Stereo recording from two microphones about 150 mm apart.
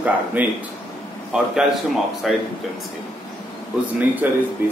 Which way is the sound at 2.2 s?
Centre (ahead or behind).